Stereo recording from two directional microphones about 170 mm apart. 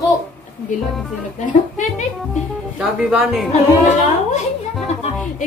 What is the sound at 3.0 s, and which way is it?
Speech, 5° right (ahead or behind).